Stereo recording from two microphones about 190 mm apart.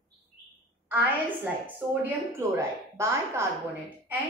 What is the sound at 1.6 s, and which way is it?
A woman's voice, 10° right (ahead or behind).